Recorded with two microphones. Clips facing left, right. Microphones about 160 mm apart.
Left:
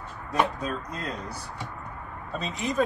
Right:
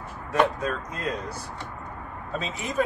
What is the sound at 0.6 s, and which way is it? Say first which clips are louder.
Speech: right 2 dB; 75° right (ahead or behind).